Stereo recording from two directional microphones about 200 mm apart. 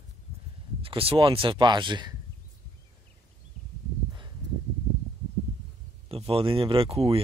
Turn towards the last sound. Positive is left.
turn(degrees=-30)  # may be behind; listen again after turning